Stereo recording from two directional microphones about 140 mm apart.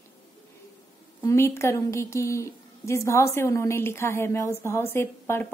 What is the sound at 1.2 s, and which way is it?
A woman's voice, 20° left (ahead or behind).